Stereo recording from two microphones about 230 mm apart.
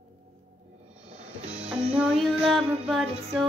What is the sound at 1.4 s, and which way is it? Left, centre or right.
Music, right.